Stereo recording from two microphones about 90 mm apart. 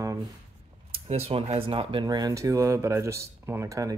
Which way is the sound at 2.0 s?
45° right (ahead or behind).